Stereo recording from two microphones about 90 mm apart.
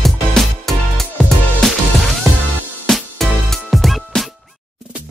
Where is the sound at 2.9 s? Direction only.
5° left (ahead or behind).